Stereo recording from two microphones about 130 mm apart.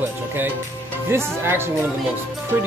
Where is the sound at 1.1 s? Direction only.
20° right (ahead or behind).